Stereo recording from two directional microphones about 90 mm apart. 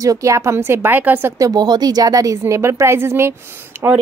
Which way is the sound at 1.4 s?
50° right (ahead or behind).